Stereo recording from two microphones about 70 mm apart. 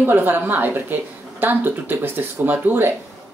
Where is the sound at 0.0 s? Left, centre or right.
Right.